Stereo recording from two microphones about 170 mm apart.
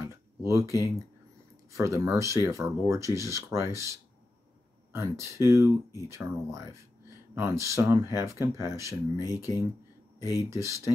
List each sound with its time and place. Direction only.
0.4 s speech: 15° right (ahead or behind)
0.7 s speech: 20° left (ahead or behind)
1.7 s speech: 15° right (ahead or behind)
9.1 s speech: 25° left (ahead or behind)
10.5 s speech: 15° right (ahead or behind)